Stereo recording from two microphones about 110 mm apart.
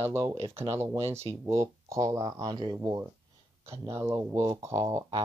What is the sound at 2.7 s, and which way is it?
Speech, 30° right (ahead or behind).